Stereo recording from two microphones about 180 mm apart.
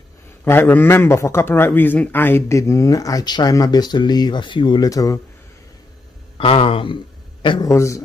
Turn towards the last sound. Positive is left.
turn(degrees=15)  # may be behind; listen again after turning